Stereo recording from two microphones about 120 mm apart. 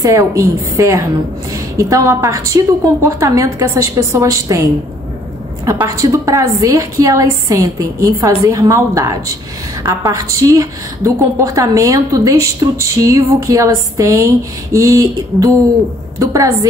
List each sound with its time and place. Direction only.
0.0 s a woman's voice: 30° right (ahead or behind)
5.9 s a woman's voice: 25° right (ahead or behind)